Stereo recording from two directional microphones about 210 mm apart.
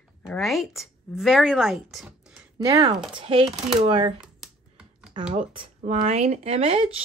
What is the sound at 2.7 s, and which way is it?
Speech, 20° right (ahead or behind).